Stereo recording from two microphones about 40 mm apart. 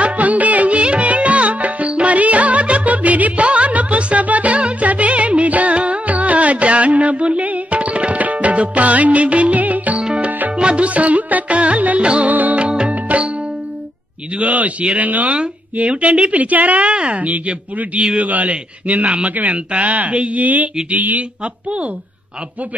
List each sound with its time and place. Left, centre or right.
0.0 s music: right
10.5 s music: right
12.3 s music: right
12.6 s music: right
14.3 s a sound: right
15.0 s speech: right
21.6 s speech: right